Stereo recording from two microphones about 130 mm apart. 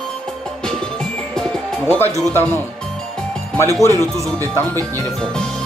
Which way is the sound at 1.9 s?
15° left (ahead or behind).